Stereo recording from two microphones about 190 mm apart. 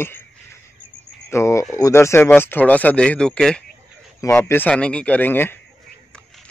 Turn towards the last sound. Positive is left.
turn(degrees=10)  # may be behind; listen again after turning